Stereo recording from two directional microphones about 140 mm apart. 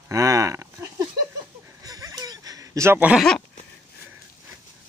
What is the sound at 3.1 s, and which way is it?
Speech, 5° left (ahead or behind).